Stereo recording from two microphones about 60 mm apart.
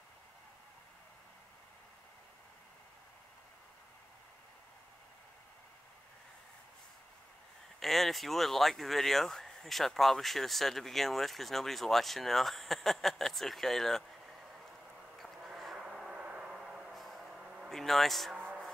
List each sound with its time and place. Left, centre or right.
7.8 s speech: centre
15.1 s a sound: centre
17.6 s speech: centre
18.3 s music: right